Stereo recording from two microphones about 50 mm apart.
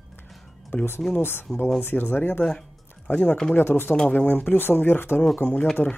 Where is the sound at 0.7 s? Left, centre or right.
Left.